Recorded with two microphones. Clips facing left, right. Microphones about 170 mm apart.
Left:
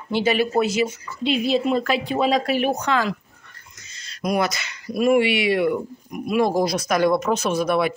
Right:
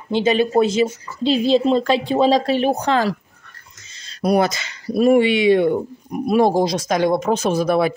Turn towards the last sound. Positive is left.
turn(degrees=-35)  # may be behind; listen again after turning